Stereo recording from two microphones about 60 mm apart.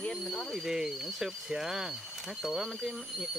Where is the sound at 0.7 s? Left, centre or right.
Centre.